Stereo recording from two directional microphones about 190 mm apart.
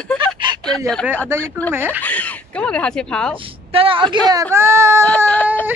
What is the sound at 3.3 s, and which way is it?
A woman's voice, 30° right (ahead or behind).